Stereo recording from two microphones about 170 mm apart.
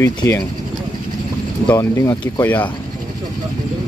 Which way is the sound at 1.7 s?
15° left (ahead or behind).